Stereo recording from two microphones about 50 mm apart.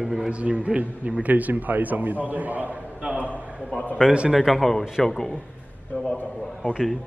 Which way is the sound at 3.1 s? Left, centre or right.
Right.